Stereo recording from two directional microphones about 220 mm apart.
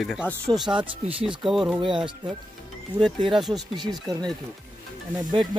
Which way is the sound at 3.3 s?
Centre (ahead or behind).